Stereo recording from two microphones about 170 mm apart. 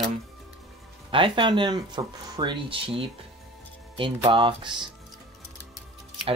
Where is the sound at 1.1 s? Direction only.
30° right (ahead or behind).